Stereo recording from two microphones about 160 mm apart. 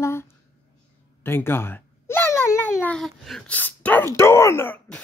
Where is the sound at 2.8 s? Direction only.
5° left (ahead or behind).